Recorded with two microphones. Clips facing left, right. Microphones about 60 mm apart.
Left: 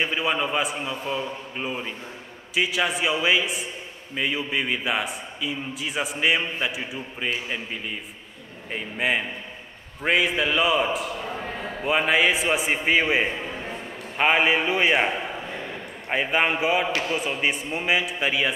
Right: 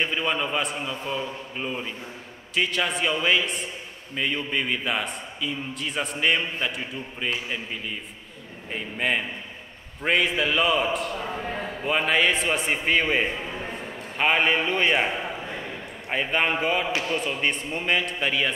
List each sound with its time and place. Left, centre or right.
0.0 s a man's voice: centre